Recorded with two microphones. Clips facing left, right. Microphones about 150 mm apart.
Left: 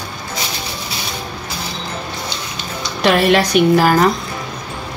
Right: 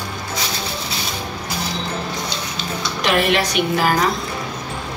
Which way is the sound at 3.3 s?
40° left (ahead or behind).